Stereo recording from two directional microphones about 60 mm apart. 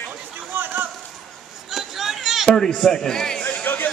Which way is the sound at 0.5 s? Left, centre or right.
Right.